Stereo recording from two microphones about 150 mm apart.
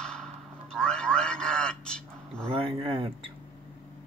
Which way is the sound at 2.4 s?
35° right (ahead or behind).